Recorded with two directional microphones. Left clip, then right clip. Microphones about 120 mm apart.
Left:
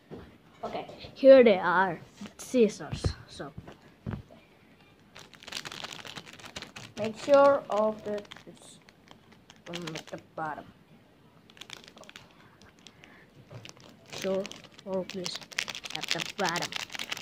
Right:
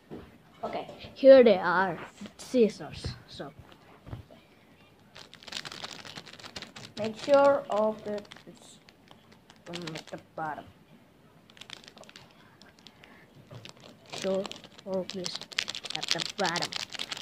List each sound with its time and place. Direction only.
0.9 s a woman's voice: 5° right (ahead or behind)
5.1 s a sound: 10° right (ahead or behind)
9.7 s speech: 10° right (ahead or behind)
11.5 s typing: 15° right (ahead or behind)
13.6 s a sound: 15° right (ahead or behind)
14.3 s speech: 20° right (ahead or behind)
15.0 s typing: 15° right (ahead or behind)